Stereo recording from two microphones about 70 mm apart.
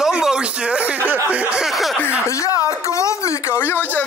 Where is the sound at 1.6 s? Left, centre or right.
Centre.